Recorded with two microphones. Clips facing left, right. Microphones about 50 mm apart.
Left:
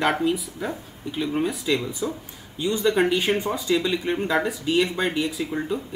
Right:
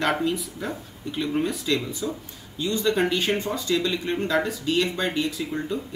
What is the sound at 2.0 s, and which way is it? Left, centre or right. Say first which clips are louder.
Speech: left 2 dB; left.